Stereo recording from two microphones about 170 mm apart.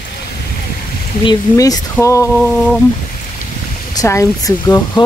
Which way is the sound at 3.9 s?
20° left (ahead or behind).